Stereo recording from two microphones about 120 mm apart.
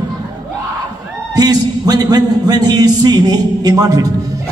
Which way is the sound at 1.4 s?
30° right (ahead or behind).